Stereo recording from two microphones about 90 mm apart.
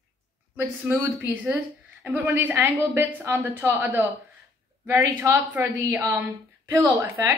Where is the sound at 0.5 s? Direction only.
20° right (ahead or behind).